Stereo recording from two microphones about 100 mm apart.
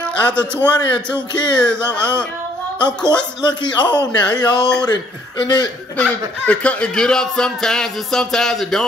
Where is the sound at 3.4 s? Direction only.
45° left (ahead or behind).